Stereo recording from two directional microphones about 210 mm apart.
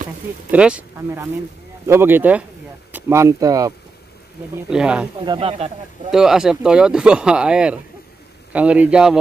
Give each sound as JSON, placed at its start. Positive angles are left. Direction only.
{"t": 0.5, "sound": "speech", "side_deg": -5}
{"t": 4.6, "sound": "speech", "side_deg": -5}
{"t": 5.2, "sound": "speech", "side_deg": -25}
{"t": 6.1, "sound": "speech", "side_deg": -5}